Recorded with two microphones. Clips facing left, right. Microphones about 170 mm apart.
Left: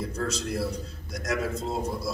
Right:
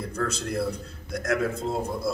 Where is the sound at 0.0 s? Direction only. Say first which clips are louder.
Right 1 dB; 55° right (ahead or behind).